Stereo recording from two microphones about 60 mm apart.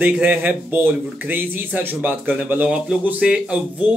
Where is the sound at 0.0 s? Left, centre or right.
Right.